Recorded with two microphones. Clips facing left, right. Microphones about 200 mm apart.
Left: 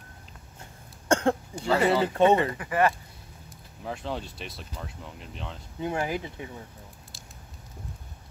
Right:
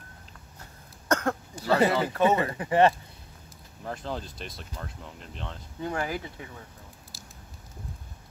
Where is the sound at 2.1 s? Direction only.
25° left (ahead or behind).